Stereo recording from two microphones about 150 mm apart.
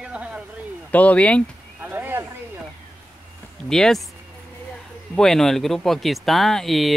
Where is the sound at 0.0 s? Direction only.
5° right (ahead or behind).